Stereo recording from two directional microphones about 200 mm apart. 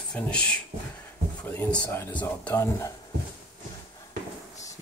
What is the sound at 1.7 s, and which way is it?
Speech, 15° left (ahead or behind).